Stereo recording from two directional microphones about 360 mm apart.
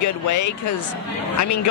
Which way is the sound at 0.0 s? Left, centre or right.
Left.